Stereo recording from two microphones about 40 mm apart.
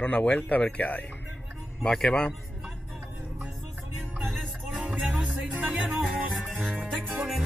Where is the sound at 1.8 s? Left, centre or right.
Centre.